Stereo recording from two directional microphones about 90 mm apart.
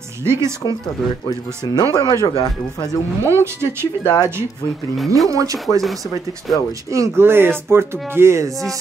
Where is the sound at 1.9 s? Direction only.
40° left (ahead or behind).